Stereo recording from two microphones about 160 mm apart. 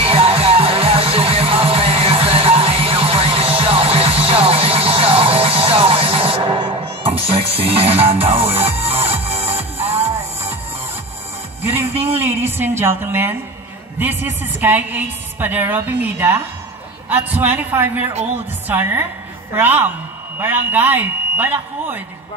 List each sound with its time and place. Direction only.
0.0 s music: 35° right (ahead or behind)
12.0 s a sound: 15° right (ahead or behind)
12.4 s a woman's voice: 15° right (ahead or behind)